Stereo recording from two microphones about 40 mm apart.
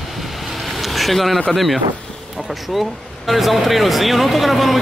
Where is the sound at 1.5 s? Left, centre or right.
Centre.